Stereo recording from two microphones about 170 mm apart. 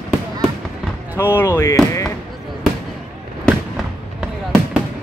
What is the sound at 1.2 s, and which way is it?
Speech, 15° left (ahead or behind).